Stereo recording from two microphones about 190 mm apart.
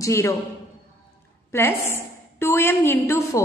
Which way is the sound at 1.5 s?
15° left (ahead or behind).